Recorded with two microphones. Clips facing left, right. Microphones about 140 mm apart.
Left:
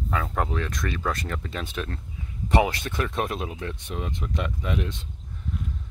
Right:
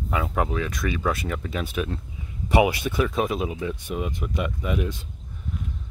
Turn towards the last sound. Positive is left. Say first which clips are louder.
# right 2 dB
turn(degrees=-5)  # may be behind; listen again after turning